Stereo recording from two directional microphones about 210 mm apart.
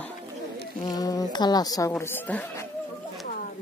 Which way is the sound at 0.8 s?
20° left (ahead or behind).